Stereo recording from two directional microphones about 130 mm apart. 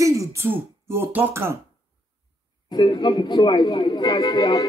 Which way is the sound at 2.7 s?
35° left (ahead or behind).